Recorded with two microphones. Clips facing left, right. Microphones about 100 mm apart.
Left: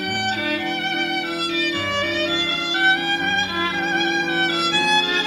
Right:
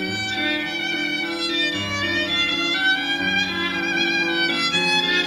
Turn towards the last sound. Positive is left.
turn(degrees=35)  # may be behind; listen again after turning